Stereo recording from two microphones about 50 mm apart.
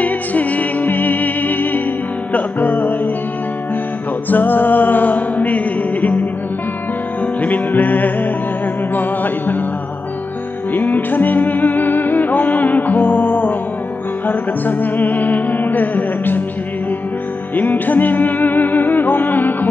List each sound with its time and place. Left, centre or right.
0.0 s music: left
4.3 s music: left
7.4 s music: left
10.7 s music: left
17.6 s music: left